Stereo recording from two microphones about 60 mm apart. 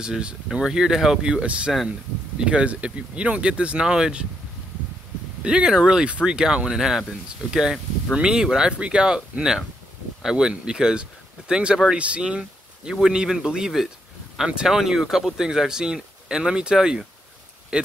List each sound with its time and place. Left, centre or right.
0.0 s speech: centre
5.4 s speech: centre